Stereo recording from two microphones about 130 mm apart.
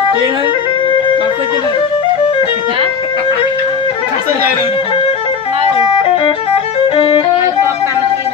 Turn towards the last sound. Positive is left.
turn(degrees=45)  # may be behind; listen again after turning